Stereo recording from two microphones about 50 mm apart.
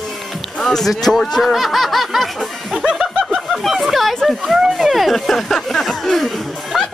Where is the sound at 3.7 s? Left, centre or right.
Centre.